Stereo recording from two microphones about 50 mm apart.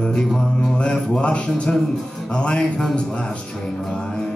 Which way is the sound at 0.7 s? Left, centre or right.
Left.